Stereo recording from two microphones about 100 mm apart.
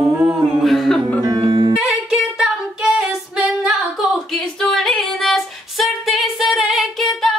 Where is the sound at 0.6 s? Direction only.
Centre (ahead or behind).